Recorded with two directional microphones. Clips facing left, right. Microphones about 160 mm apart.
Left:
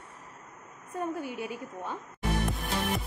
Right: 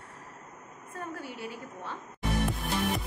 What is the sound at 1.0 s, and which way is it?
A woman's voice, 15° left (ahead or behind).